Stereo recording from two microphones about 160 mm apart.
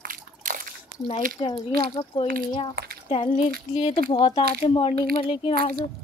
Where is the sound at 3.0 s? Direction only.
35° left (ahead or behind).